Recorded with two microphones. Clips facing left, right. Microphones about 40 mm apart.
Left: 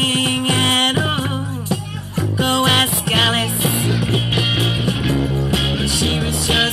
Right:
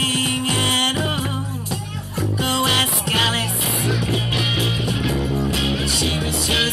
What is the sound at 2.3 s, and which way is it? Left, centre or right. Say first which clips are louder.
Music: left 4 dB; left.